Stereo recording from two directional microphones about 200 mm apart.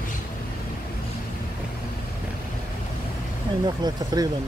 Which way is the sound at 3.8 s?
20° right (ahead or behind).